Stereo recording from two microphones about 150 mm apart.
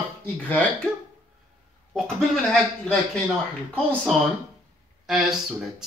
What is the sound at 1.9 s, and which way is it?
Speech, 5° left (ahead or behind).